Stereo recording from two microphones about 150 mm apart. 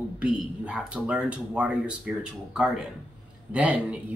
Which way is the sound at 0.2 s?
5° right (ahead or behind).